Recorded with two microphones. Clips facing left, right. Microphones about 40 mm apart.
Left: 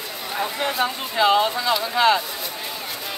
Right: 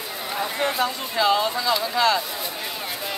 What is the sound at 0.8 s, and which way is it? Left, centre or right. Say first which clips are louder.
Speech: left 5 dB; left.